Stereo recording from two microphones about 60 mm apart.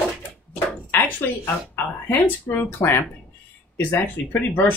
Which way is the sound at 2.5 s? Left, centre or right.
Left.